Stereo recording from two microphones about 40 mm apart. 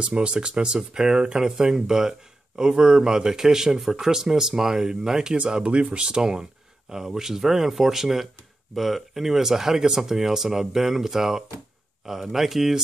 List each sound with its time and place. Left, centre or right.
0.0 s speech: right; by 12.8 s centre